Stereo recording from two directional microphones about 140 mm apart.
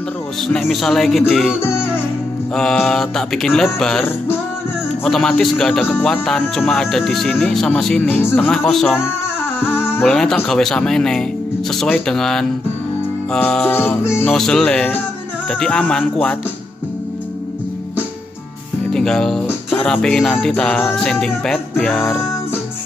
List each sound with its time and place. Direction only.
0.4 s music: centre (ahead or behind)
1.5 s speech: 15° left (ahead or behind)
2.5 s music: 5° left (ahead or behind)
5.0 s music: centre (ahead or behind)
8.6 s music: centre (ahead or behind)
9.6 s music: 15° left (ahead or behind)
10.0 s music: 5° left (ahead or behind)
13.3 s speech: 5° left (ahead or behind)
14.3 s music: 5° left (ahead or behind)
15.6 s speech: 5° left (ahead or behind)
18.9 s speech: 5° left (ahead or behind)
19.4 s music: 10° left (ahead or behind)